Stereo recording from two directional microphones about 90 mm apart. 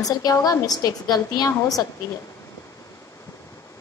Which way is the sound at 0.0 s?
45° left (ahead or behind).